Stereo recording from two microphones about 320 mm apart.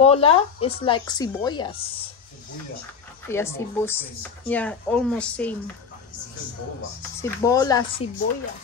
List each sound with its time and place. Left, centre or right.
0.0 s a woman's voice: centre
3.3 s speech: centre
7.2 s a woman's voice: centre